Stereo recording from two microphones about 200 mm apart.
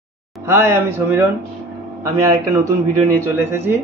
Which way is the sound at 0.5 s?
10° right (ahead or behind).